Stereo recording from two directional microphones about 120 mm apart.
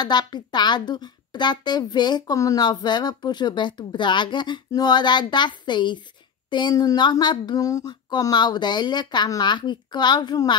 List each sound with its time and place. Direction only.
0.0 s speech: 35° left (ahead or behind)